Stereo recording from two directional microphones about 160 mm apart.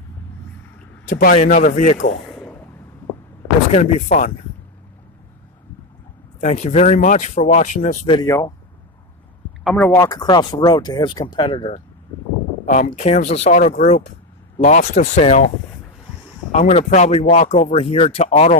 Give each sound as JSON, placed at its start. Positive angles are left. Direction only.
{"t": 1.0, "sound": "speech", "side_deg": 60}
{"t": 1.3, "sound": "speech", "side_deg": 50}
{"t": 3.7, "sound": "speech", "side_deg": 50}
{"t": 6.4, "sound": "speech", "side_deg": 45}
{"t": 8.1, "sound": "speech", "side_deg": 25}
{"t": 9.8, "sound": "speech", "side_deg": 20}
{"t": 12.6, "sound": "speech", "side_deg": 50}
{"t": 16.5, "sound": "speech", "side_deg": 45}